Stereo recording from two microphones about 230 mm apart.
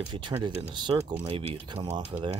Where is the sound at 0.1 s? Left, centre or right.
Centre.